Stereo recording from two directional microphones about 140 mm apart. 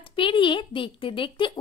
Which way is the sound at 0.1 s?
35° left (ahead or behind).